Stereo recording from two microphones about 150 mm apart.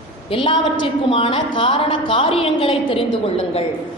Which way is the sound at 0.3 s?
35° left (ahead or behind).